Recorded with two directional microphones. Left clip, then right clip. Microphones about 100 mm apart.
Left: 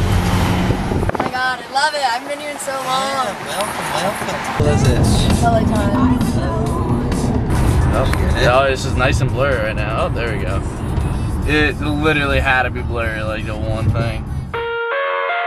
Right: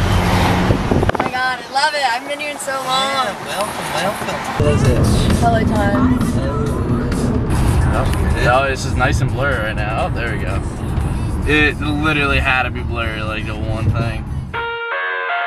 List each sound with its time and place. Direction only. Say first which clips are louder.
0.1 s vehicle: right 4 dB; 15° right (ahead or behind)
1.3 s a sound: even; 15° left (ahead or behind)
3.5 s speech: left 1 dB; 20° right (ahead or behind)
4.6 s speech: right 1 dB; 20° left (ahead or behind)
5.6 s speech: right 1 dB; 15° right (ahead or behind)
5.9 s vehicle: even; 15° left (ahead or behind)
7.2 s vehicle: even; 20° right (ahead or behind)
7.9 s speech: left 4 dB; 20° right (ahead or behind)
11.4 s speech: right 2 dB; 15° right (ahead or behind)